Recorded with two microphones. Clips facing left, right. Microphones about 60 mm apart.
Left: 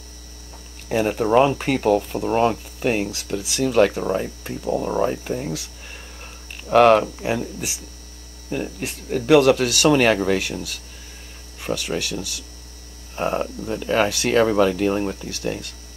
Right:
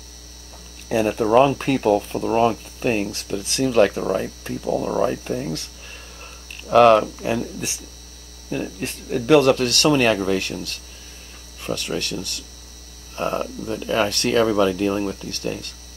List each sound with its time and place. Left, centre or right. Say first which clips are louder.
0.8 s speech: right 1 dB; centre
6.7 s speech: right 1 dB; centre; by 13.9 s left
13.9 s speech: left 1 dB; centre